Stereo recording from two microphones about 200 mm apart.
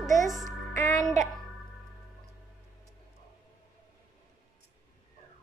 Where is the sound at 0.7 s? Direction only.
15° left (ahead or behind).